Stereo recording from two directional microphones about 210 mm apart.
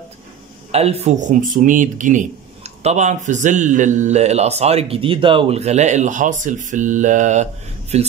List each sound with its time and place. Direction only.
0.7 s a man's voice: 30° right (ahead or behind)